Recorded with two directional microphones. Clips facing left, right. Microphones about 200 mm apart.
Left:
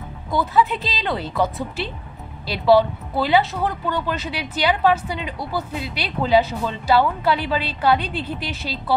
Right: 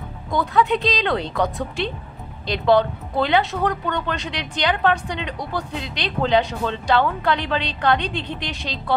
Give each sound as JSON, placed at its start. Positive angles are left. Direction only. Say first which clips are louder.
{"t": 0.3, "sound": "a woman's voice", "louder": "even", "side_deg": 5}